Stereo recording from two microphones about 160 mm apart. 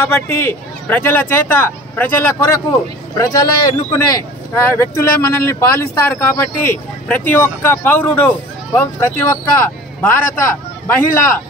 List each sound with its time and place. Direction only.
0.1 s speech: 15° left (ahead or behind)